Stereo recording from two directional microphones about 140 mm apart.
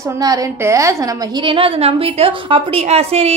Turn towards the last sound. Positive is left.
turn(degrees=-45)  # may be behind; listen again after turning